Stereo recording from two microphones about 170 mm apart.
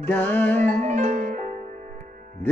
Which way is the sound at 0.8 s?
45° right (ahead or behind).